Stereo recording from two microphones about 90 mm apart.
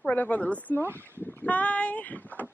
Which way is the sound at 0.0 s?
20° left (ahead or behind).